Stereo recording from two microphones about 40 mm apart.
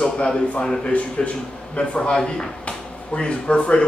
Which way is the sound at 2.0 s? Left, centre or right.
Centre.